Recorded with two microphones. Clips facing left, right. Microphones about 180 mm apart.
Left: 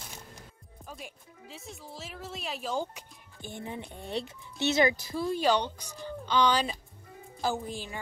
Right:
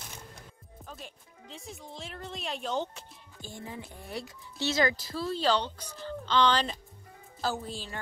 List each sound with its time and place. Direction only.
0.8 s speech: 10° left (ahead or behind)